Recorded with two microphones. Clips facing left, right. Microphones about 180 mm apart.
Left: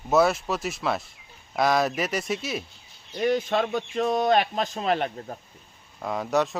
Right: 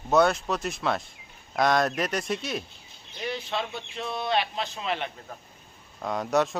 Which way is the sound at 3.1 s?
50° left (ahead or behind).